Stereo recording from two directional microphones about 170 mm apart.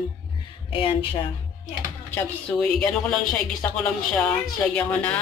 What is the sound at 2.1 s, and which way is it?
A woman's voice, 5° left (ahead or behind).